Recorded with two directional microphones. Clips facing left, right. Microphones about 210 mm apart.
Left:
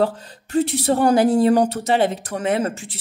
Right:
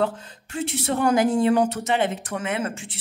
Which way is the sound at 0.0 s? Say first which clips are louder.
Left 4 dB; 35° left (ahead or behind).